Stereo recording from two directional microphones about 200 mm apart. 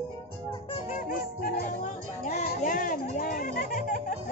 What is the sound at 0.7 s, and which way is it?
Music, 40° left (ahead or behind).